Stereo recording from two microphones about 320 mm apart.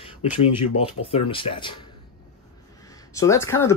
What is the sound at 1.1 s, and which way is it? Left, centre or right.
Speech, centre.